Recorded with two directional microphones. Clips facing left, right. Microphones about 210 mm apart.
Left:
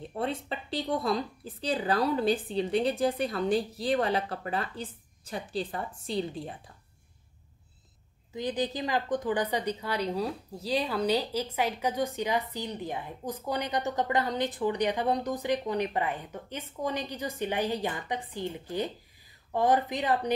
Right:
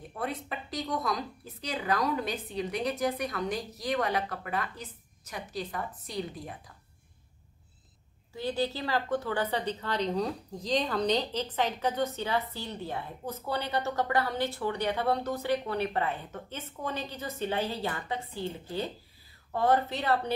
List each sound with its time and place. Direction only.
0.1 s speech: 30° left (ahead or behind)
8.3 s a woman's voice: 15° left (ahead or behind)